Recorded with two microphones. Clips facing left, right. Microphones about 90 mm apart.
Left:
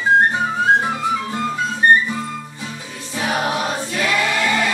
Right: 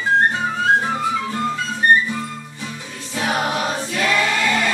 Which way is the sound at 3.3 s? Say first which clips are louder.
Left 1 dB; 5° left (ahead or behind).